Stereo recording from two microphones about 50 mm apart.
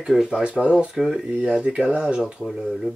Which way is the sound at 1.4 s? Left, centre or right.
Centre.